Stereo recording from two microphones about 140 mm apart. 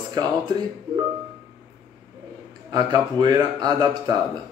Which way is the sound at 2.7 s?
30° right (ahead or behind).